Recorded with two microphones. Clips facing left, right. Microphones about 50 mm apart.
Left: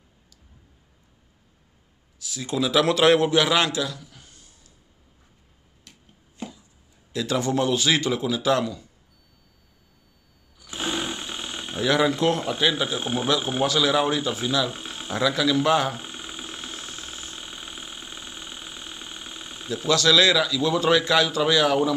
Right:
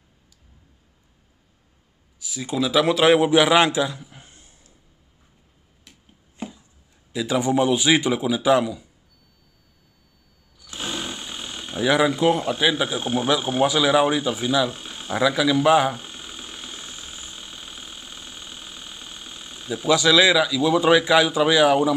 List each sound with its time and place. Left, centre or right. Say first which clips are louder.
2.1 s a man's voice: right 1 dB; centre; by 4.7 s right
5.9 s a sound: even; centre
7.1 s speech: right 3 dB; centre
10.6 s a sound: left 2 dB; centre
11.8 s speech: right 2 dB; centre
13.0 s speech: right 3 dB; centre
13.6 s speech: right 5 dB; centre
14.7 s a sound: right 1 dB; centre
15.1 s speech: right 2 dB; centre
16.0 s insect: left 1 dB; centre
17.4 s engine: left 1 dB; centre
19.7 s speech: right 2 dB; centre